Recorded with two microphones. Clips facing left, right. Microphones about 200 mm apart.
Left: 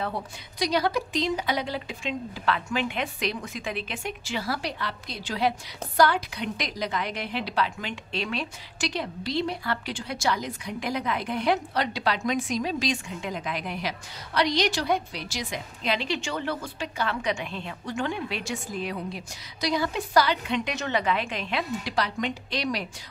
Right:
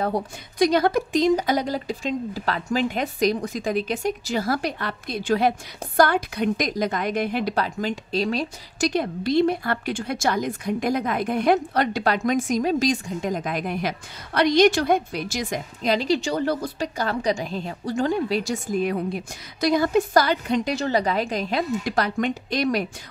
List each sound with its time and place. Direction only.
0.0 s a woman's voice: 45° right (ahead or behind)